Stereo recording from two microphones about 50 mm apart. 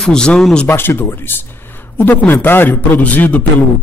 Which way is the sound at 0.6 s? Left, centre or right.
Left.